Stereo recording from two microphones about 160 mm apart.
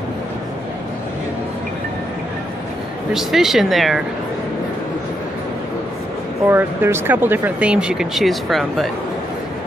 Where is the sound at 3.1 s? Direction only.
Centre (ahead or behind).